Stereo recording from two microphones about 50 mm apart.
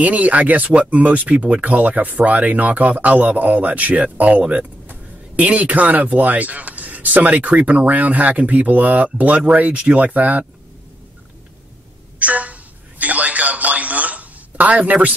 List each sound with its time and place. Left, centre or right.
0.0 s speech: right
12.2 s a sound: right
13.0 s telephone: right